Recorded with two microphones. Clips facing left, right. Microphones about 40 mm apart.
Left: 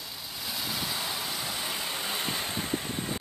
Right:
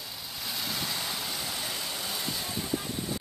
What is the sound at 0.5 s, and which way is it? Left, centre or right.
Vehicle, centre.